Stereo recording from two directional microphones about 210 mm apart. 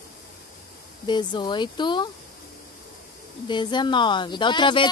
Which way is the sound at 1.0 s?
20° left (ahead or behind).